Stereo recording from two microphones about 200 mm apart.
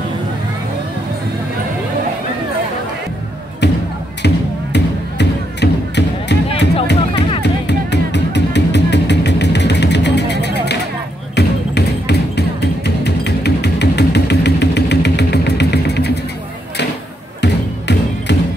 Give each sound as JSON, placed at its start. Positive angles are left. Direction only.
{"t": 3.6, "sound": "music", "side_deg": 55}